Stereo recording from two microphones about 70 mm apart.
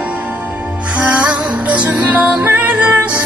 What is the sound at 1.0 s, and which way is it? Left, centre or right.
Music, centre.